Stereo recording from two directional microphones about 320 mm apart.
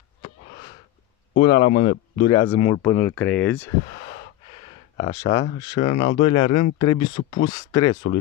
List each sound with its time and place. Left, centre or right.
1.4 s speech: centre
1.7 s speech: left
2.2 s speech: centre
4.9 s speech: centre
5.3 s speech: left
5.6 s speech: centre
5.9 s speech: left
6.3 s speech: centre